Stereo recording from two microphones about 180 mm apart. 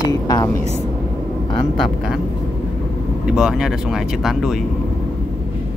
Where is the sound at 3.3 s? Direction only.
5° right (ahead or behind).